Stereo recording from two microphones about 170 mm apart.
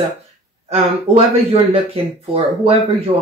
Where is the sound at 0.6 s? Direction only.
40° right (ahead or behind).